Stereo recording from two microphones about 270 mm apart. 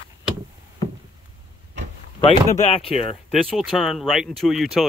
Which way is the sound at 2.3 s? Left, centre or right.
Left.